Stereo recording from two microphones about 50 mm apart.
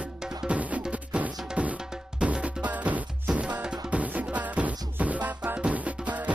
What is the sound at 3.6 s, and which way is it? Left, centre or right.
Music, centre.